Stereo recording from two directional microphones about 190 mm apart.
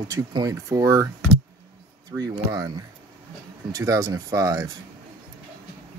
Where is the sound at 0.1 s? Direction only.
20° right (ahead or behind).